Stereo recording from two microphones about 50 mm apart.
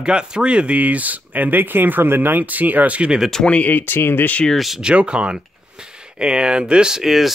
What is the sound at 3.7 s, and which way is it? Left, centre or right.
Speech, left.